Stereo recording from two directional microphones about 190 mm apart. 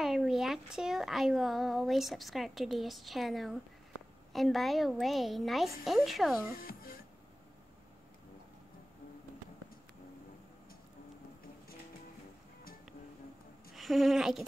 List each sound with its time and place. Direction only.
0.0 s speech: centre (ahead or behind)
6.5 s music: 50° left (ahead or behind)
13.7 s speech: centre (ahead or behind)